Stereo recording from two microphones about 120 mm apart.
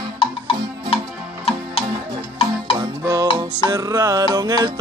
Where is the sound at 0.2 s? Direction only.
50° left (ahead or behind).